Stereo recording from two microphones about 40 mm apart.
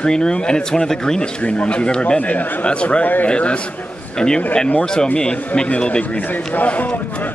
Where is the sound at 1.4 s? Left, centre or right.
Left.